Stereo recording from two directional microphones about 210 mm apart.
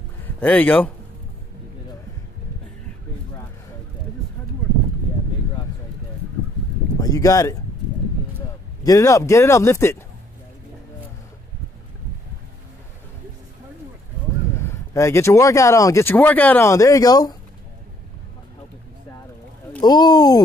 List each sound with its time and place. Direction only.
0.2 s speech: 10° left (ahead or behind)
7.0 s speech: 15° left (ahead or behind)
14.5 s speech: 10° left (ahead or behind)
19.8 s speech: 20° left (ahead or behind)